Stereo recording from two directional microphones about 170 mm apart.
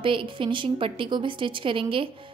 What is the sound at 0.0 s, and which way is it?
A woman's voice, 30° right (ahead or behind).